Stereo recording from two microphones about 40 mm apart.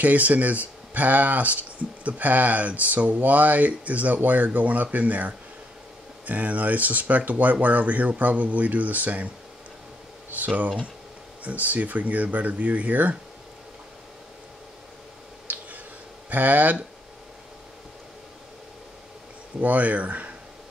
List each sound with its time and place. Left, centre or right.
0.0 s speech: right
10.3 s speech: right
15.5 s a sound: right
16.3 s speech: right
19.6 s speech: right